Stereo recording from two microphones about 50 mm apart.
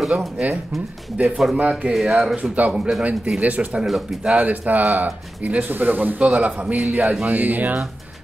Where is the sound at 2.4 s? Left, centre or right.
Right.